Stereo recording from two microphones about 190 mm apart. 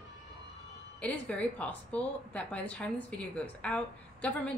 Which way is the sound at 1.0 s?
5° left (ahead or behind).